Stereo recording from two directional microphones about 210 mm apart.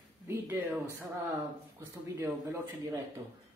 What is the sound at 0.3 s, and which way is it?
Speech, 10° right (ahead or behind).